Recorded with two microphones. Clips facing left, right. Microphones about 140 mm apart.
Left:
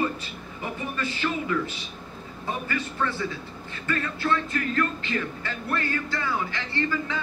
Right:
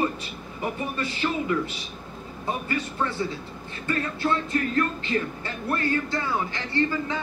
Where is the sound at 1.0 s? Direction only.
25° right (ahead or behind).